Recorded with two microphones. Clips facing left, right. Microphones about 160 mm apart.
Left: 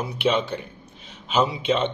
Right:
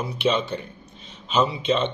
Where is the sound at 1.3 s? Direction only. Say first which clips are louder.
Even; 10° left (ahead or behind).